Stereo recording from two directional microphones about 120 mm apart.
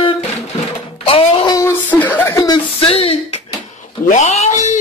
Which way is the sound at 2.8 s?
50° left (ahead or behind).